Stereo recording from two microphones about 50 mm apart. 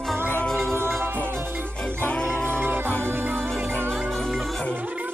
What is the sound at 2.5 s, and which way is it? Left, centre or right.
Music, right.